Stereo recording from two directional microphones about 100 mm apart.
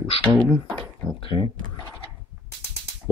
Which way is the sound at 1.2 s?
60° left (ahead or behind).